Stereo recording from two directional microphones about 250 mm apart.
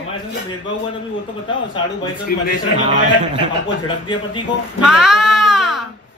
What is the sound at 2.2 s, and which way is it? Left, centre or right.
Speech, left.